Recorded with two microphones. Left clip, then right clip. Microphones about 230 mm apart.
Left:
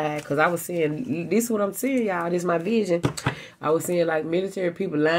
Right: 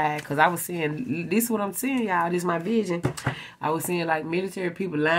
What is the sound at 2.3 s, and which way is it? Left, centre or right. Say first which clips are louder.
Speech: left 2 dB; centre.